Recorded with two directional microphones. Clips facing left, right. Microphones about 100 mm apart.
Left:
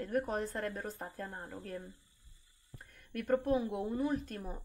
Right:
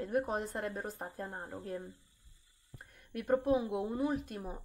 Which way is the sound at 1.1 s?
20° right (ahead or behind).